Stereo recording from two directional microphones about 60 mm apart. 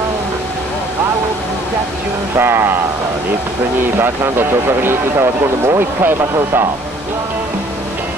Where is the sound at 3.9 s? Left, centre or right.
Right.